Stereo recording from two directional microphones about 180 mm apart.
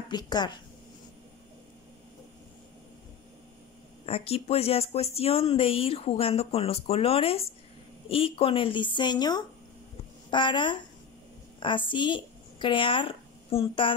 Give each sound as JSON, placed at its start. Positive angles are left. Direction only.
{"t": 0.1, "sound": "a woman's voice", "side_deg": 25}
{"t": 4.0, "sound": "a woman's voice", "side_deg": 35}